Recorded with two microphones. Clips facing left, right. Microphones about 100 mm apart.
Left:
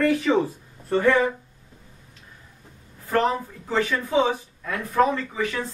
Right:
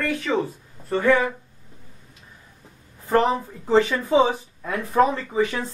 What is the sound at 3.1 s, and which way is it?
Speech, 20° right (ahead or behind).